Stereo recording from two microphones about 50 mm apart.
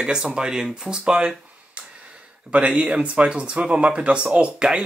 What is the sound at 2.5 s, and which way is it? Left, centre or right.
Speech, right.